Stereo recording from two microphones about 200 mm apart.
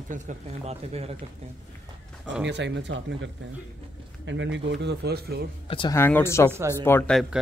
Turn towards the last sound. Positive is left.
turn(degrees=5)  # may be behind; listen again after turning